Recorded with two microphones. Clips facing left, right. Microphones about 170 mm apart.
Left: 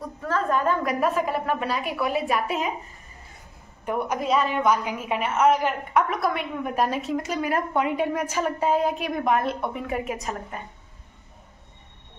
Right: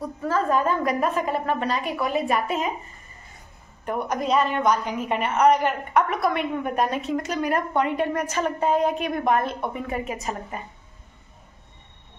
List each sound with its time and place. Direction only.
0.3 s a woman's voice: 5° right (ahead or behind)
3.8 s a woman's voice: 5° left (ahead or behind)